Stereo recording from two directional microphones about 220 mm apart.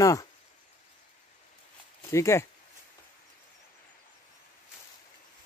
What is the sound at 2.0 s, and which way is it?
Speech, 15° left (ahead or behind).